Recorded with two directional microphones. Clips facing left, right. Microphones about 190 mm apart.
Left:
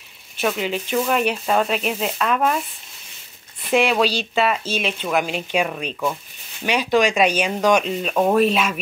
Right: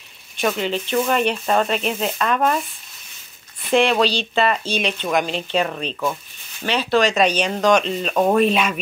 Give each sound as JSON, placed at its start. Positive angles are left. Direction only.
{"t": 0.4, "sound": "speech", "side_deg": 5}
{"t": 3.7, "sound": "speech", "side_deg": 5}